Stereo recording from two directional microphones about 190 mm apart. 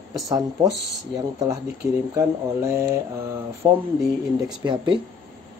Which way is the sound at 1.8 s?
15° right (ahead or behind).